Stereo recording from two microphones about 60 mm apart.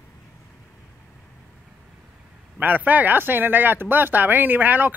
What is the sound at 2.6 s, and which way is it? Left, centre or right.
Speech, right.